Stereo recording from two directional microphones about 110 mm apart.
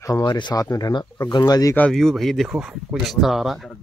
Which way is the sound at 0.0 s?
35° left (ahead or behind).